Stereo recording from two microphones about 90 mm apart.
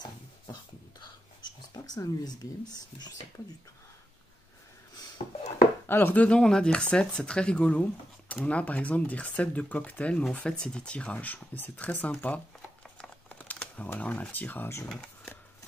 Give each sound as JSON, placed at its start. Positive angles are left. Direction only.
{"t": 1.4, "sound": "a sound", "side_deg": 45}
{"t": 5.9, "sound": "speech", "side_deg": 20}
{"t": 12.9, "sound": "typing", "side_deg": 10}
{"t": 13.9, "sound": "speech", "side_deg": 15}